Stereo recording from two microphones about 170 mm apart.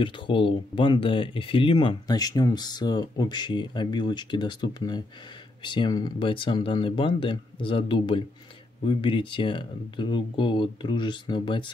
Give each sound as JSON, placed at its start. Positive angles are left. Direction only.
{"t": 0.0, "sound": "speech", "side_deg": 30}